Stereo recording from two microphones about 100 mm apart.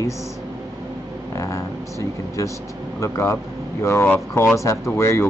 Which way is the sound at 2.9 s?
30° left (ahead or behind).